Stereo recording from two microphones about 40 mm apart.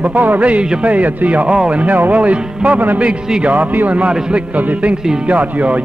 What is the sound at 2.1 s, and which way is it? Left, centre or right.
A man's voice, right.